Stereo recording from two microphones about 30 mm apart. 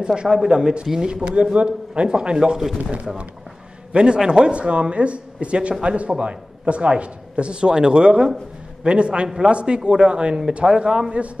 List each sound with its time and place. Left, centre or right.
0.0 s speech: right
1.2 s speech: right; by 3.2 s centre
3.9 s a man's voice: right